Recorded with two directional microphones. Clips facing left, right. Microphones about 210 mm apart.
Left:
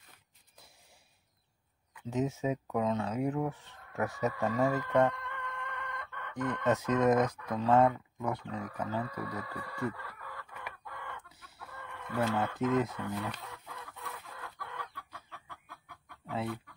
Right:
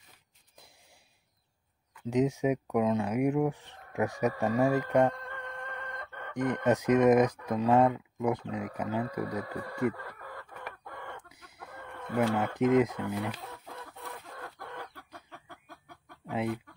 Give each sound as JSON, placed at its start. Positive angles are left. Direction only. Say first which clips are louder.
{"t": 2.0, "sound": "speech", "louder": "right 5 dB", "side_deg": -15}
{"t": 5.1, "sound": "chicken", "louder": "right 1 dB", "side_deg": -40}
{"t": 6.3, "sound": "speech", "louder": "right 3 dB", "side_deg": -15}
{"t": 9.2, "sound": "speech", "louder": "right 5 dB", "side_deg": -45}
{"t": 9.9, "sound": "chicken", "louder": "right 3 dB", "side_deg": -45}
{"t": 12.2, "sound": "speech", "louder": "right 4 dB", "side_deg": -15}
{"t": 14.1, "sound": "chicken", "louder": "right 3 dB", "side_deg": -45}
{"t": 16.3, "sound": "speech", "louder": "right 4 dB", "side_deg": -15}